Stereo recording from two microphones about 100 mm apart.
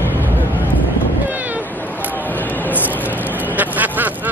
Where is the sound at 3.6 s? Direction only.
15° right (ahead or behind).